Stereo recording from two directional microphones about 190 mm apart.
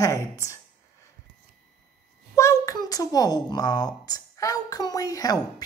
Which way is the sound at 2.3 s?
15° left (ahead or behind).